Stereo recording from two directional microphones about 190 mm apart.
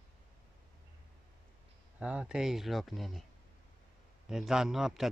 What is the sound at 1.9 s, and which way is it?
A man's voice, 5° right (ahead or behind).